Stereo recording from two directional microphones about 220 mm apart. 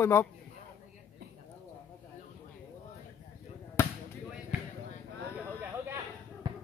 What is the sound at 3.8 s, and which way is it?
Basketball bounce, 10° left (ahead or behind).